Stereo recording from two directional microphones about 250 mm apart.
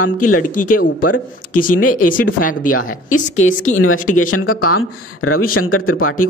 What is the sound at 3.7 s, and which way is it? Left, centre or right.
Speech, left.